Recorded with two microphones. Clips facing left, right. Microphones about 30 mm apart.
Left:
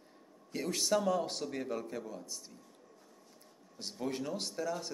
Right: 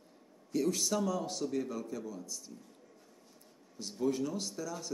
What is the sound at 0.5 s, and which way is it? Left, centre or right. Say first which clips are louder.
Speech: right 1 dB; left.